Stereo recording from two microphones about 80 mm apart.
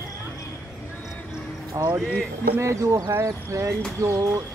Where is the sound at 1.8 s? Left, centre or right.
Right.